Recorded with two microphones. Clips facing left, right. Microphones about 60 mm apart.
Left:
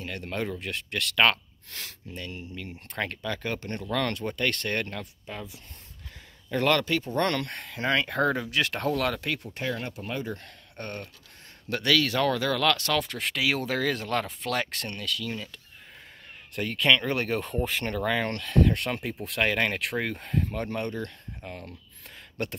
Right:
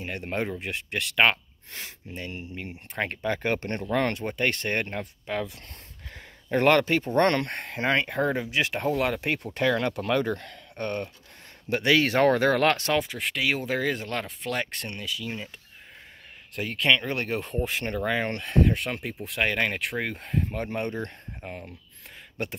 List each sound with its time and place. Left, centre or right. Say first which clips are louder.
0.0 s speech: right 2 dB; right
2.7 s speech: right 2 dB; centre
3.2 s speech: right 5 dB; right
3.9 s speech: right 2 dB; right
5.2 s speech: right 8 dB; right
6.5 s speech: right 4 dB; right
8.0 s speech: even; centre
9.2 s speech: right 3 dB; right
9.6 s speech: right 8 dB; right
11.7 s speech: right 3 dB; right
13.0 s speech: even; centre
16.5 s speech: even; centre; by 18.7 s right
18.7 s speech: even; centre